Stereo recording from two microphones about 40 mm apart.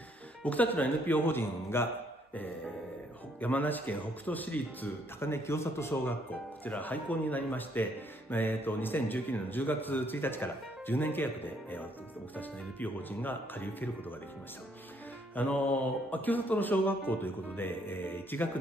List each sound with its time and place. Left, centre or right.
0.4 s speech: left
3.3 s speech: left
5.2 s a man's voice: left
6.6 s a man's voice: left
15.4 s a man's voice: left